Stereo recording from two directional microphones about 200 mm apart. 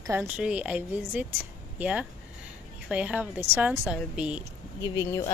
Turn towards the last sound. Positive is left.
turn(degrees=15)  # may be behind; listen again after turning